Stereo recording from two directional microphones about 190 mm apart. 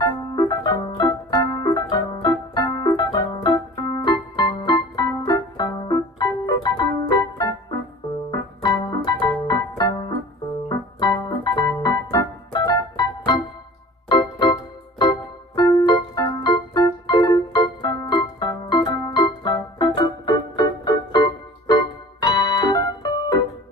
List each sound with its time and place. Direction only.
0.0 s keyboard: 20° left (ahead or behind)